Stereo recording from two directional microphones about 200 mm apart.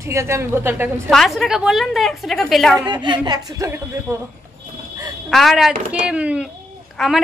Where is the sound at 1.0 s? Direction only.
Centre (ahead or behind).